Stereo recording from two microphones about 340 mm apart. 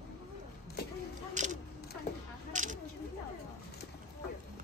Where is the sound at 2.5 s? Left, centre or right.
Right.